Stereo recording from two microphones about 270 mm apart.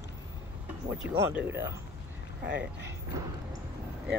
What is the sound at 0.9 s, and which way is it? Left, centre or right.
Speech, centre.